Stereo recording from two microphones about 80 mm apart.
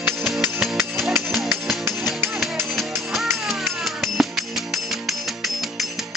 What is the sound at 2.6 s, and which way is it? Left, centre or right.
Music, centre.